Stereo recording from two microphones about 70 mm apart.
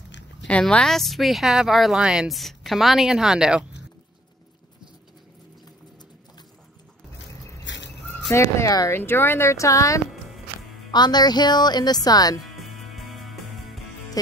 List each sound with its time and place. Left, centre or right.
0.5 s speech: centre
2.2 s speech: centre
8.3 s speech: left
9.5 s speech: left
10.9 s speech: left
12.4 s music: centre
14.2 s music: left